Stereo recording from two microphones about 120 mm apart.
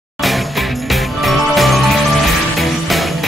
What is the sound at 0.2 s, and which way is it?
Music, centre (ahead or behind).